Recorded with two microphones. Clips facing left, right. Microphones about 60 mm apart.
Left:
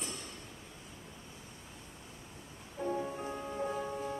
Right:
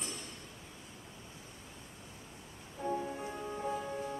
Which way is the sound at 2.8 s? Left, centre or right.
Centre.